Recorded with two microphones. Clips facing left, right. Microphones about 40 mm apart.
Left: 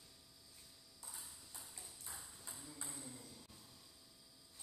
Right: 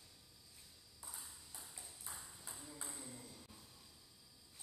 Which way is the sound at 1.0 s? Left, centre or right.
Centre.